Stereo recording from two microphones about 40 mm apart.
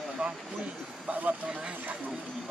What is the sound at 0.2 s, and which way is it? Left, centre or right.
Speech, right.